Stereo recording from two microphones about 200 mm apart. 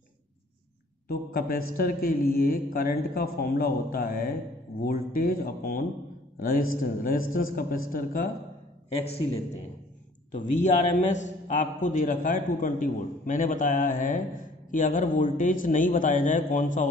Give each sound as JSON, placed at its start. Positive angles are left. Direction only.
{"t": 1.0, "sound": "a man's voice", "side_deg": 50}
{"t": 8.8, "sound": "a man's voice", "side_deg": 30}